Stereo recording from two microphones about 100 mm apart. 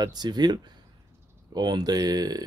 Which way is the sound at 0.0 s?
45° right (ahead or behind).